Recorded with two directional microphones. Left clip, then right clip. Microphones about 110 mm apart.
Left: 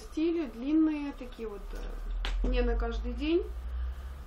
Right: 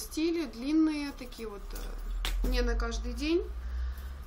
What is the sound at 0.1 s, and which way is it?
Speech, 20° right (ahead or behind).